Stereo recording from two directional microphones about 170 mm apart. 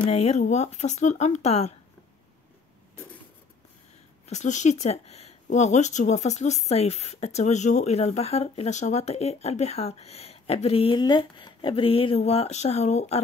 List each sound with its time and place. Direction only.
0.0 s speech: 40° left (ahead or behind)
4.3 s speech: 45° left (ahead or behind)